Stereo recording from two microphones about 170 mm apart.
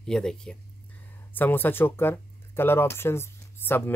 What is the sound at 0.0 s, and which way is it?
Speech, 5° left (ahead or behind).